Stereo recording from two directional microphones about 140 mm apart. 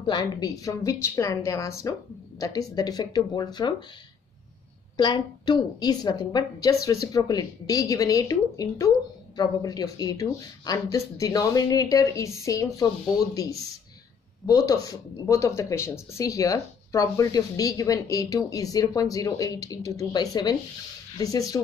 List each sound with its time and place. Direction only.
0.0 s speech: 30° left (ahead or behind)
4.9 s speech: 35° left (ahead or behind)